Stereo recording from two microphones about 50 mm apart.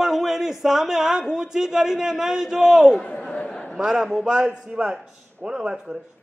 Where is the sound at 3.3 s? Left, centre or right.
Left.